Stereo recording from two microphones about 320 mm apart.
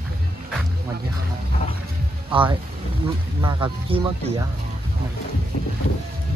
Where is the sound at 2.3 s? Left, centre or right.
Centre.